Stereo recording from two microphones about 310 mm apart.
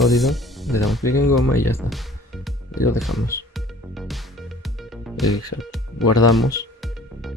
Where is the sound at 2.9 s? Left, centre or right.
Centre.